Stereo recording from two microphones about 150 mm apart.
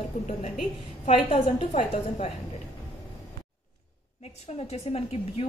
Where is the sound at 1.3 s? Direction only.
45° left (ahead or behind).